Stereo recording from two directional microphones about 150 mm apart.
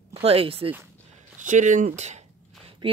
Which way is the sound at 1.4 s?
55° right (ahead or behind).